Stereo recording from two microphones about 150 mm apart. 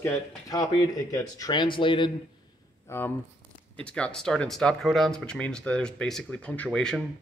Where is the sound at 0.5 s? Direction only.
25° left (ahead or behind).